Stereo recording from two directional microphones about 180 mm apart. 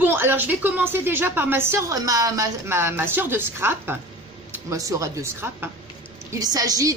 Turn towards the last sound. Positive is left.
turn(degrees=-20)  # may be behind; listen again after turning